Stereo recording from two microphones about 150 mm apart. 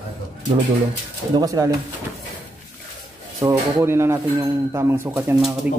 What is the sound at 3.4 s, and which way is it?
Speech, 15° right (ahead or behind).